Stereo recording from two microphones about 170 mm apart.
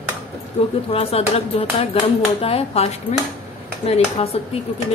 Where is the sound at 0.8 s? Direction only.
35° left (ahead or behind).